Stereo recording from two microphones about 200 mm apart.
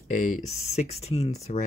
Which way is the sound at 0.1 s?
40° left (ahead or behind).